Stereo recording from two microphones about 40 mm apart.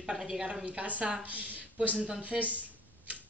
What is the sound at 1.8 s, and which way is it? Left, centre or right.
Speech, right.